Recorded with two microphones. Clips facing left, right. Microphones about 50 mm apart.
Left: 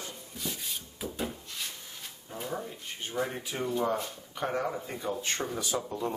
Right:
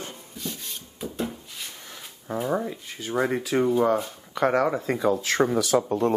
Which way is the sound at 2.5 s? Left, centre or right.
Right.